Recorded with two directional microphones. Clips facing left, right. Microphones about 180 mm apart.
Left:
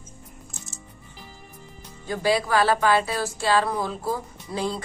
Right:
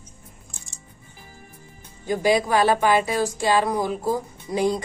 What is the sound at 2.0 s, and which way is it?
Speech, 15° right (ahead or behind).